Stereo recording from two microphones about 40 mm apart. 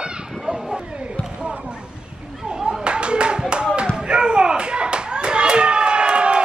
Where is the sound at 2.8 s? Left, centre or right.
Right.